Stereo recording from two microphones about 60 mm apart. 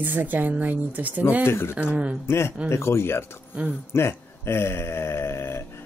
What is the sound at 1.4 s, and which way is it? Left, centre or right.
Speech, left.